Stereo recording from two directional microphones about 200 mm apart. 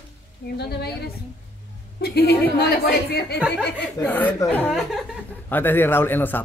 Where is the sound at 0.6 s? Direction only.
55° left (ahead or behind).